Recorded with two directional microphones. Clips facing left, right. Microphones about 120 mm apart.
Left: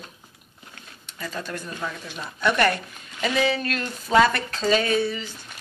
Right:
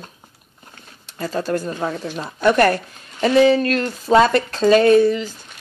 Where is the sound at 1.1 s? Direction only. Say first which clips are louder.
Right 10 dB; 35° right (ahead or behind).